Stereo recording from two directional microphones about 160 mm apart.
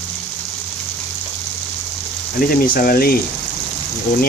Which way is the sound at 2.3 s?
65° left (ahead or behind).